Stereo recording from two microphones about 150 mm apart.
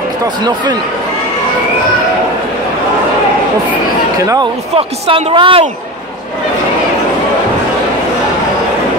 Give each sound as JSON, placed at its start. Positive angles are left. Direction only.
{"t": 4.2, "sound": "speech", "side_deg": -20}
{"t": 4.7, "sound": "a woman's voice", "side_deg": -35}